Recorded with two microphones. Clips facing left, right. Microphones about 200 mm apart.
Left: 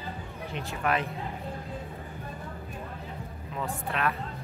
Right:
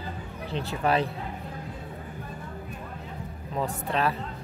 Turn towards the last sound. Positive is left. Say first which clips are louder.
# right 3 dB
turn(degrees=-30)  # may be behind; listen again after turning